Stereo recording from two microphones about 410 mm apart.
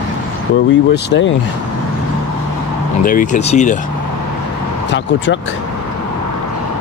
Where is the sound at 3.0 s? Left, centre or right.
Centre.